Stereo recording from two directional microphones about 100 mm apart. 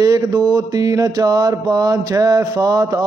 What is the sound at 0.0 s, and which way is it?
A man's voice, 35° right (ahead or behind).